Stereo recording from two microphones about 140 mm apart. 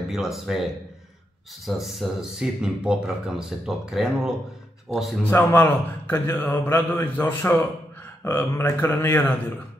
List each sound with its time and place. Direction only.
0.1 s speech: centre (ahead or behind)
1.8 s speech: centre (ahead or behind)
5.2 s a man's voice: 15° left (ahead or behind)